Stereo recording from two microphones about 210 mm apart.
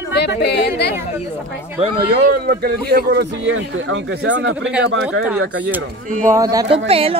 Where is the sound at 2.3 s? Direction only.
45° right (ahead or behind); by 5.3 s 65° right (ahead or behind).